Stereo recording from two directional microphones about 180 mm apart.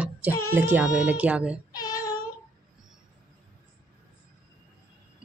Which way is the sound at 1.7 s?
20° left (ahead or behind).